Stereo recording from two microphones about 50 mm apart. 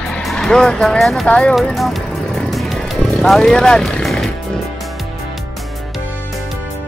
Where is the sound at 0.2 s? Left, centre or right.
Centre.